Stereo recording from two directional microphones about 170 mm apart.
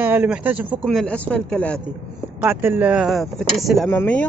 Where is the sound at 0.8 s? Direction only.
5° left (ahead or behind).